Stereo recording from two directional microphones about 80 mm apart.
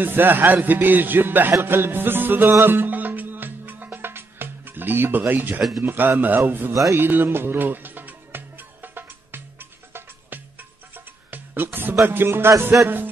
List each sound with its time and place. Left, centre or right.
0.0 s speech: right
2.5 s music: right
5.8 s speech: right
6.7 s music: right
7.0 s music: right
12.8 s speech: right